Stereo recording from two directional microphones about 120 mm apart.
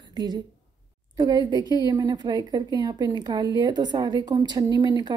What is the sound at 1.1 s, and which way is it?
A woman's voice, 35° right (ahead or behind).